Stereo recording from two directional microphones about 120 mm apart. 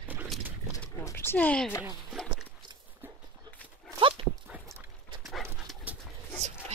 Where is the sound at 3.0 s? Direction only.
15° right (ahead or behind).